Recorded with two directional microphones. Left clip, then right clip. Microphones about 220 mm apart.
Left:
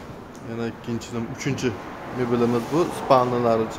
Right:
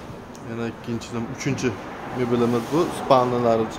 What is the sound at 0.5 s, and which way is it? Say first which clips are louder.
A man's voice: even; centre (ahead or behind).